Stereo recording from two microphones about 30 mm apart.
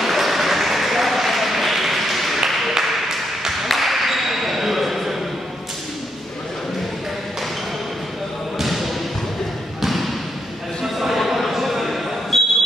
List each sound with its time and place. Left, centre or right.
0.0 s applause: centre
2.8 s a sound: centre
3.6 s ping: centre
8.5 s basketball bounce: centre
9.8 s trickle: centre
11.0 s a sound: centre